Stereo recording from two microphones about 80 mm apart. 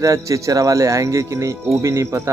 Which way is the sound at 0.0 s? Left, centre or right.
Right.